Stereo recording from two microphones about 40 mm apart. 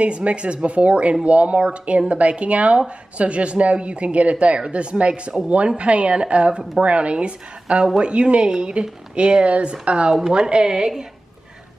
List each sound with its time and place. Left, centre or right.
0.0 s speech: right